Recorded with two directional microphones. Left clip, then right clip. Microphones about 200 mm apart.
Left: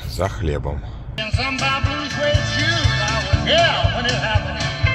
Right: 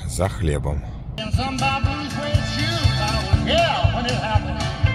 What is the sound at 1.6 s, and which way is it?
Music, 30° left (ahead or behind).